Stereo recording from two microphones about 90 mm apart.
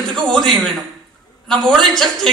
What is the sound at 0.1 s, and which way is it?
A man's voice, 5° left (ahead or behind).